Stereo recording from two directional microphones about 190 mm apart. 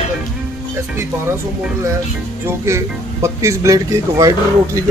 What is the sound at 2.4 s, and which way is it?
Speech, 15° right (ahead or behind).